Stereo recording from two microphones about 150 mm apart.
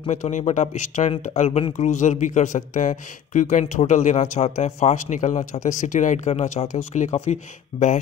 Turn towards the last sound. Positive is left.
turn(degrees=50)  # may be behind; listen again after turning